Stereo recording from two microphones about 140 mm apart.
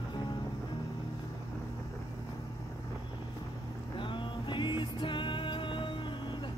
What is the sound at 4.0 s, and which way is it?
Music, 35° left (ahead or behind).